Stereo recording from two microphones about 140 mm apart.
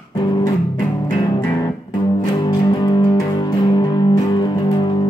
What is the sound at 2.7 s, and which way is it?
Music, 30° left (ahead or behind).